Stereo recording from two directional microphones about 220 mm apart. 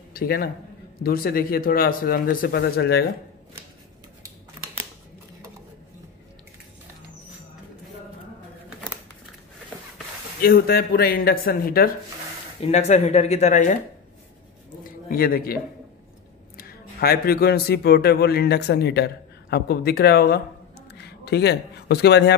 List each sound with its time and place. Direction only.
0.1 s a man's voice: 40° left (ahead or behind)
4.6 s a sound: 10° right (ahead or behind)
10.4 s speech: 45° left (ahead or behind)
12.6 s speech: 30° left (ahead or behind)
14.8 s a sound: 40° left (ahead or behind)
16.5 s speech: 45° left (ahead or behind)